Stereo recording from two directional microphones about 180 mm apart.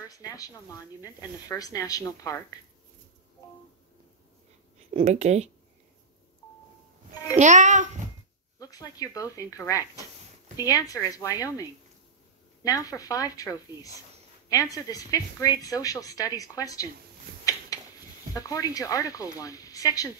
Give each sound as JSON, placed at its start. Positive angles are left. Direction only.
{"t": 0.1, "sound": "a woman's voice", "side_deg": 20}
{"t": 4.9, "sound": "a child's voice", "side_deg": -40}
{"t": 7.3, "sound": "a child's voice", "side_deg": -40}
{"t": 8.5, "sound": "a woman's voice", "side_deg": 20}
{"t": 17.7, "sound": "a sound", "side_deg": 20}
{"t": 18.3, "sound": "a woman's voice", "side_deg": 20}